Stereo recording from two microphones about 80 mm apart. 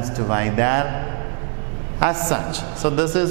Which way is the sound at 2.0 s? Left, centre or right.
Centre.